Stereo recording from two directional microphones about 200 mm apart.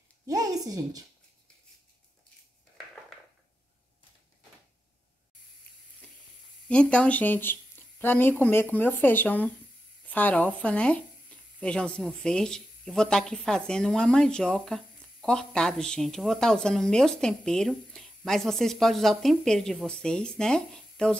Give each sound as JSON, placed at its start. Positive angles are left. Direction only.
{"t": 0.3, "sound": "speech", "side_deg": -15}
{"t": 6.7, "sound": "speech", "side_deg": 5}